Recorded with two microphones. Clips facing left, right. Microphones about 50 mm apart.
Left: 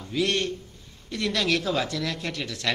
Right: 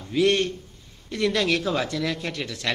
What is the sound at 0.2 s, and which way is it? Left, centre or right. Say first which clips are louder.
A woman's voice: right 5 dB; right.